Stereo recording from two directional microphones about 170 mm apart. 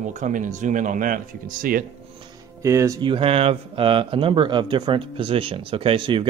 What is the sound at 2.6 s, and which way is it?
Speech, 15° right (ahead or behind).